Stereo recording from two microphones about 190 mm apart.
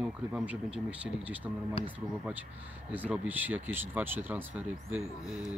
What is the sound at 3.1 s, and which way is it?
Speech, 10° right (ahead or behind).